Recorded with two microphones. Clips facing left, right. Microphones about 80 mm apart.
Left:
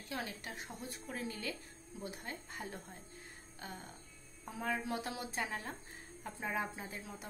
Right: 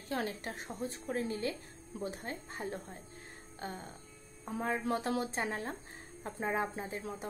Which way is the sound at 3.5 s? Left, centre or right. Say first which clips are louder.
Right 6 dB; right.